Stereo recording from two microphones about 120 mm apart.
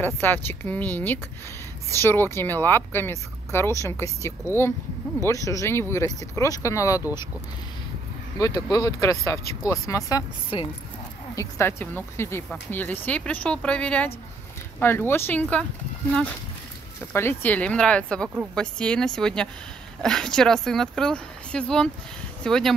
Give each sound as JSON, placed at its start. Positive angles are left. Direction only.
{"t": 0.0, "sound": "speech", "side_deg": 15}
{"t": 5.2, "sound": "speech", "side_deg": 25}
{"t": 8.4, "sound": "speech", "side_deg": 30}
{"t": 10.5, "sound": "speech", "side_deg": 45}
{"t": 11.3, "sound": "speech", "side_deg": 20}
{"t": 17.1, "sound": "speech", "side_deg": 20}